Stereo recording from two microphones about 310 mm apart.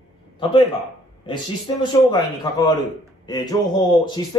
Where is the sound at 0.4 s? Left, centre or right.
Centre.